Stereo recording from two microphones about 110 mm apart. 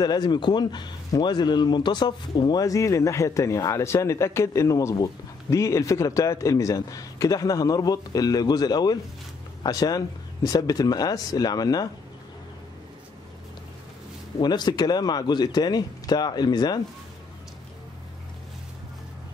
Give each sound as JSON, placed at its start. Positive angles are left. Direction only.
{"t": 0.0, "sound": "a man's voice", "side_deg": 40}
{"t": 14.4, "sound": "a man's voice", "side_deg": 40}